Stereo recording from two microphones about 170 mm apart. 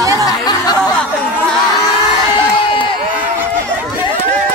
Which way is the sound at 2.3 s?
30° left (ahead or behind).